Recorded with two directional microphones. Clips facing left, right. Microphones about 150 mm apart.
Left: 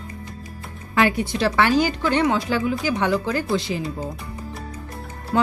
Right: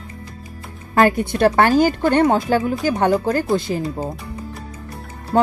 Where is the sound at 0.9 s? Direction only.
45° right (ahead or behind).